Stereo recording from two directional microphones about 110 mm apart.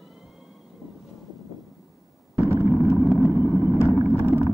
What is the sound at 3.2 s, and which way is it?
Vehicle, 20° left (ahead or behind).